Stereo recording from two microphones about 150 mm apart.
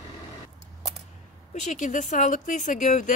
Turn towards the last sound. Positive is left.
turn(degrees=55)  # may be behind; listen again after turning